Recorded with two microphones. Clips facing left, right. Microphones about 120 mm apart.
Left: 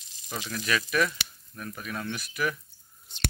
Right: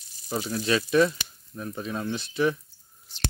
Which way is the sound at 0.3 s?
30° right (ahead or behind).